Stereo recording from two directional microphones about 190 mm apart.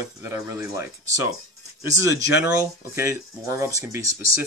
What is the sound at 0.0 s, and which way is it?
Speech, 15° right (ahead or behind).